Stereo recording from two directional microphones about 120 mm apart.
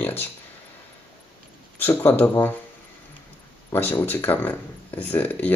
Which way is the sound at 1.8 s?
15° left (ahead or behind).